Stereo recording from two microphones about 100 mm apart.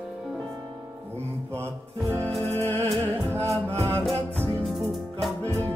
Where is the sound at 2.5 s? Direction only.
25° left (ahead or behind).